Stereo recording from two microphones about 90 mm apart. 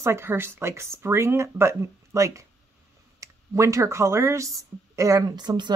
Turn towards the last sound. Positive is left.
turn(degrees=-55)  # may be behind; listen again after turning